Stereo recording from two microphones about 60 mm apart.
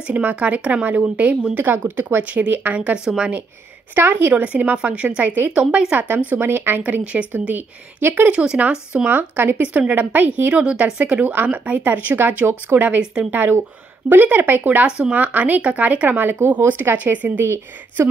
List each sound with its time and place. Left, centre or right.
0.0 s speech: right
1.5 s speech: right
2.2 s speech: right
3.9 s speech: right
6.8 s speech: right
13.0 s speech: centre
13.3 s speech: right
14.9 s speech: centre